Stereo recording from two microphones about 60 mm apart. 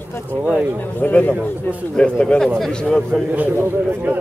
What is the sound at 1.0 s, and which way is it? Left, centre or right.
A man's voice, left.